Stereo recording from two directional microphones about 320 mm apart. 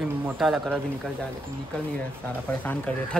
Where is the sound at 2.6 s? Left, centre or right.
Centre.